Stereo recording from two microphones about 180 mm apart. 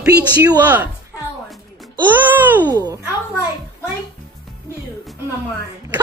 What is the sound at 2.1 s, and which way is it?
Speech, 10° right (ahead or behind).